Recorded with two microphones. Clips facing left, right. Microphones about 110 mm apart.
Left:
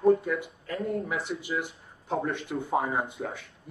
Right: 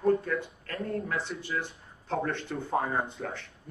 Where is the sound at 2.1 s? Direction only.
Centre (ahead or behind).